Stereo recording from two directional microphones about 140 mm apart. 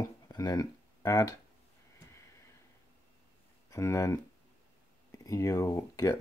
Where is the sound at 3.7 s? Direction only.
20° left (ahead or behind).